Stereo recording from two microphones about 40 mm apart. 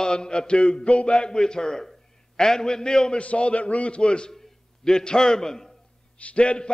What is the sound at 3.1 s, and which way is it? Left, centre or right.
A man's voice, left.